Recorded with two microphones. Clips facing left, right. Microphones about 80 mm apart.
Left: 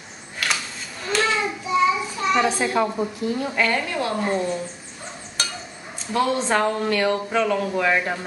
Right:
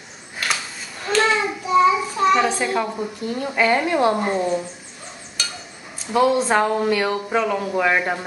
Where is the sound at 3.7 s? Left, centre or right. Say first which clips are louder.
Right 6 dB; right.